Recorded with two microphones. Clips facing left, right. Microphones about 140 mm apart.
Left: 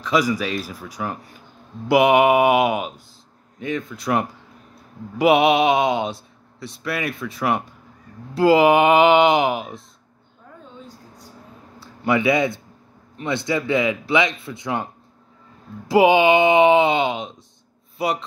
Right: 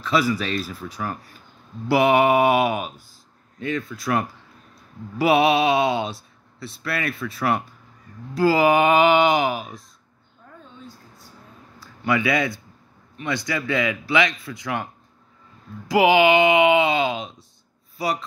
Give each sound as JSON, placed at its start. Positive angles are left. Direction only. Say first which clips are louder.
{"t": 0.0, "sound": "speech", "louder": "left 1 dB", "side_deg": 15}
{"t": 11.8, "sound": "a man's voice", "louder": "left 3 dB", "side_deg": 25}
{"t": 15.9, "sound": "speech", "louder": "left 2 dB", "side_deg": 25}